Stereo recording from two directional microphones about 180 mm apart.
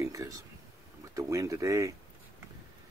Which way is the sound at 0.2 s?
20° right (ahead or behind).